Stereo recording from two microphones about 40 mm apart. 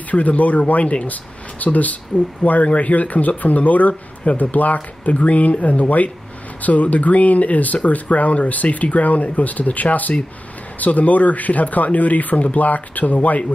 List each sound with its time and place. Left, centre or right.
0.1 s speech: left